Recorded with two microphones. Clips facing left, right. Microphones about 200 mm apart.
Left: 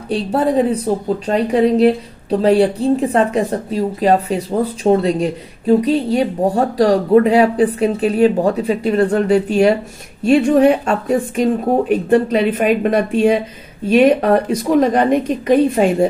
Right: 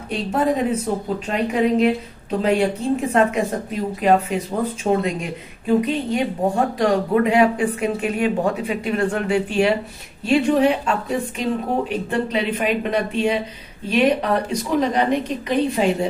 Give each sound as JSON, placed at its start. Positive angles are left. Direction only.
{"t": 0.1, "sound": "a woman's voice", "side_deg": 35}
{"t": 12.1, "sound": "a woman's voice", "side_deg": 50}